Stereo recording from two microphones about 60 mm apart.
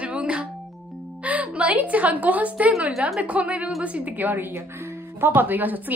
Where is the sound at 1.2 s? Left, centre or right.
Right.